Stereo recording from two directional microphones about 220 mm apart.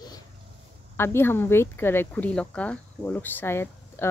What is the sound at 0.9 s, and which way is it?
Speech, 10° left (ahead or behind).